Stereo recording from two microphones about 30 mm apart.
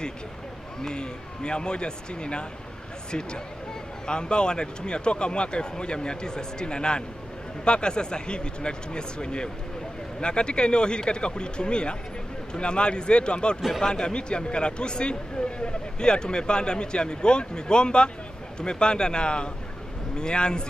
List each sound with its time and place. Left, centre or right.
0.8 s speech: left